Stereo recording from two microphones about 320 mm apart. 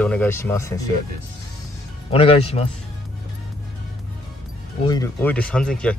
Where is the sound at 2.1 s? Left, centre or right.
Centre.